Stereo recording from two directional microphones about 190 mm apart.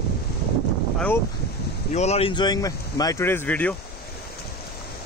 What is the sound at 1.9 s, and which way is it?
Speech, 35° left (ahead or behind).